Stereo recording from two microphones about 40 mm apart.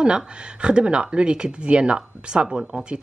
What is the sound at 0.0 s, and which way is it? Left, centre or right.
Speech, right.